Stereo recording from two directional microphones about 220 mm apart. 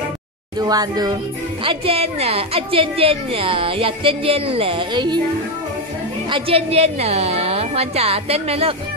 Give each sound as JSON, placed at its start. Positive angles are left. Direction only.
{"t": 0.6, "sound": "speech", "side_deg": -15}
{"t": 6.2, "sound": "speech", "side_deg": -25}